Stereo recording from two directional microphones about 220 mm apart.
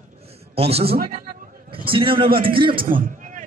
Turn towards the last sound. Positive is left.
turn(degrees=-40)  # may be behind; listen again after turning